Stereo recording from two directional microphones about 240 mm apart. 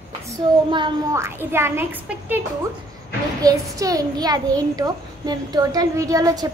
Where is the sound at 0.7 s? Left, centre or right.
Centre.